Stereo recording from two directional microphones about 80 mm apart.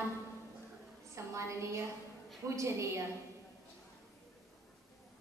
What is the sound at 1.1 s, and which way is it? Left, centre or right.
A woman's voice, right.